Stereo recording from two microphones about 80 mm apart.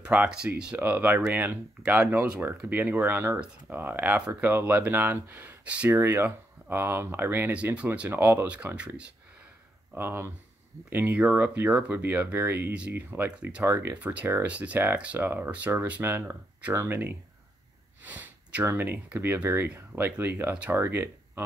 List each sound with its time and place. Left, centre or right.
0.0 s speech: centre
0.7 s speech: right
7.5 s speech: centre
9.9 s speech: right
13.7 s speech: right
13.9 s speech: centre